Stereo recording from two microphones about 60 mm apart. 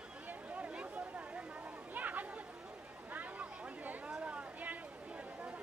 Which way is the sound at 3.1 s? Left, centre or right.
Right.